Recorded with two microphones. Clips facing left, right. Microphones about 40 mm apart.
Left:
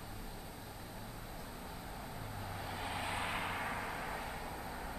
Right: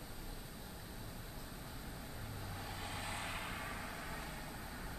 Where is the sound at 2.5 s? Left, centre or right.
Centre.